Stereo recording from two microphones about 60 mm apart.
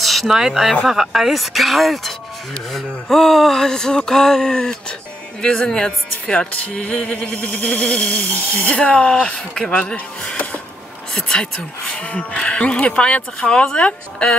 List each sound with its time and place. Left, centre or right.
0.0 s speech: centre